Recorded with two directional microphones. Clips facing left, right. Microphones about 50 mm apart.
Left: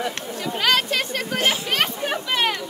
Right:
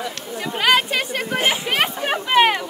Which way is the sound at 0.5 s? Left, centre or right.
Centre.